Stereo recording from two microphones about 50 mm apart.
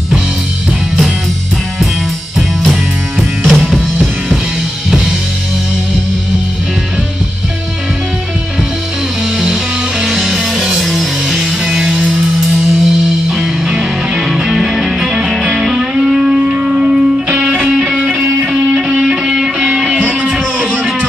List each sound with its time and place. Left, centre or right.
2.3 s music: centre
10.0 s music: centre; by 17.7 s right
18.8 s music: centre